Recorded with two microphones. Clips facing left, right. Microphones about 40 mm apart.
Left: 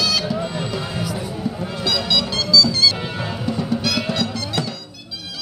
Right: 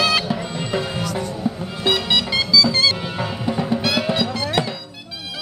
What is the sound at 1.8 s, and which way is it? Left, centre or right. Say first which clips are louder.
Music: right 2 dB; right.